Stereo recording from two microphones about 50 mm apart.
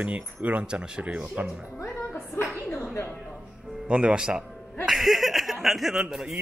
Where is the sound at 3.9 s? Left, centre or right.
Centre.